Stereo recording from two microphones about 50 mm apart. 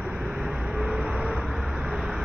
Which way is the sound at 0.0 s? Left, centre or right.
Right.